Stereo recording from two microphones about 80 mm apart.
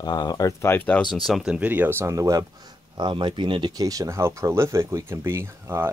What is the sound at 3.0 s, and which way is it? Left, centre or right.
Speech, right.